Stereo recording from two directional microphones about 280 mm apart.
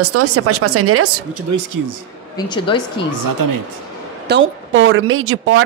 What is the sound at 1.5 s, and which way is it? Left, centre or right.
Speech, right.